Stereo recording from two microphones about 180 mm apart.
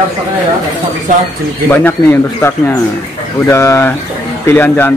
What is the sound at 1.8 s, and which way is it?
Speech, 10° left (ahead or behind).